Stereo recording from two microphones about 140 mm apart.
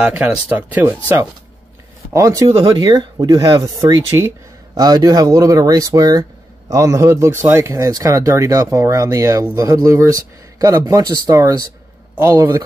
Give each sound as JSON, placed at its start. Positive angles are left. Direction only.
{"t": 0.0, "sound": "speech", "side_deg": -10}